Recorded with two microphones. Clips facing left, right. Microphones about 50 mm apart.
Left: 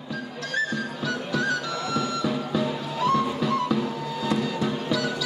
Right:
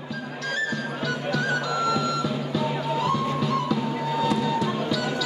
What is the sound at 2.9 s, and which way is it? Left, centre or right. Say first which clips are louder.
Music: left 4 dB; centre.